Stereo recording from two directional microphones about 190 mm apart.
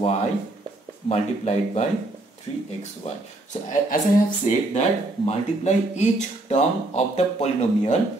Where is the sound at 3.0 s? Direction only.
40° left (ahead or behind).